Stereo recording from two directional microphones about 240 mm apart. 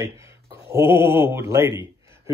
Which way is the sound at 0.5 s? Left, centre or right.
Centre.